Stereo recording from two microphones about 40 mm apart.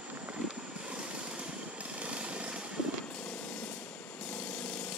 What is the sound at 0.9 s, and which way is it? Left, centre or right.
Vehicle, right.